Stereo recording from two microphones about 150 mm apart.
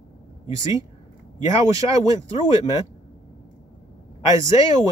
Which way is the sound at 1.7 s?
20° right (ahead or behind).